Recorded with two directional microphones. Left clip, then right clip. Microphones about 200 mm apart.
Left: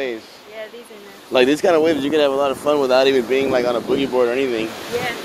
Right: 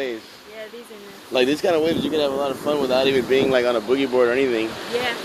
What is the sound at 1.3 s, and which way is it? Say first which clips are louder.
Speech: left 4 dB; 20° left (ahead or behind).